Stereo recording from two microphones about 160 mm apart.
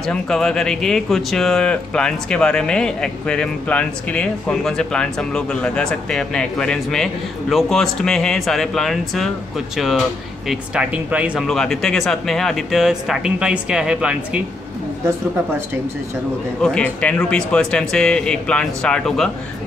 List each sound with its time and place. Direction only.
0.0 s speech: 5° left (ahead or behind)
10.5 s speech: 5° right (ahead or behind)
16.6 s speech: 5° left (ahead or behind)